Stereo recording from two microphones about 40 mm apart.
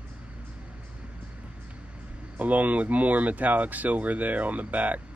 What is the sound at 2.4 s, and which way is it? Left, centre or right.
Speech, right.